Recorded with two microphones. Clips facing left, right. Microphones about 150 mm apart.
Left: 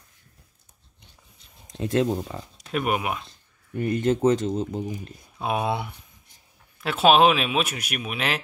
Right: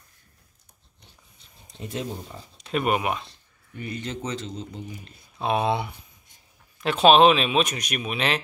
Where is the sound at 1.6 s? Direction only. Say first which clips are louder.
Left 9 dB; 90° left.